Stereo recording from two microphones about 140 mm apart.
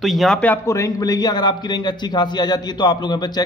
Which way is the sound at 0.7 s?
25° left (ahead or behind).